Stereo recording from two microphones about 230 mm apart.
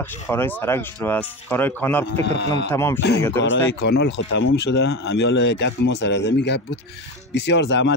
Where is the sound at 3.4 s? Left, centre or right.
Left.